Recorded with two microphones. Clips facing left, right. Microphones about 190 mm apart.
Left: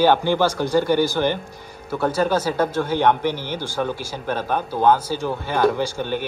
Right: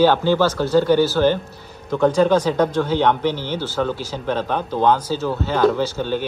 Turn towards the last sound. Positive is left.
turn(degrees=15)  # may be behind; listen again after turning